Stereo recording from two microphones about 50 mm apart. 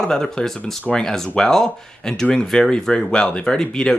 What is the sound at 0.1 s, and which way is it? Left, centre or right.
Speech, centre.